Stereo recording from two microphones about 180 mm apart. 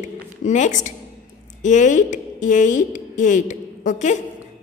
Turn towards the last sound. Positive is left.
turn(degrees=45)  # may be behind; listen again after turning